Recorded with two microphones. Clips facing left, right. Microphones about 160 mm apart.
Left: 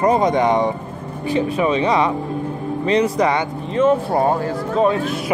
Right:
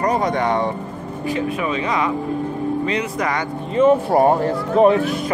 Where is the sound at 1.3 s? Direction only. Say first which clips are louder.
Left 4 dB; 30° left (ahead or behind).